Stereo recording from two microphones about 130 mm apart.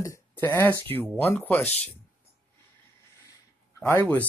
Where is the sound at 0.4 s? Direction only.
20° left (ahead or behind).